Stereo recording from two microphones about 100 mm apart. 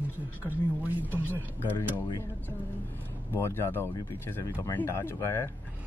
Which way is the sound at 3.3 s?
25° left (ahead or behind).